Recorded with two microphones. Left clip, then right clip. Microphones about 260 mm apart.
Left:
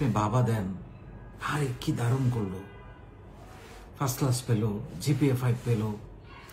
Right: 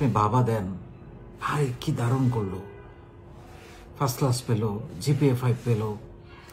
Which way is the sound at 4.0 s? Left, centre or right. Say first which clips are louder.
Right 4 dB; centre.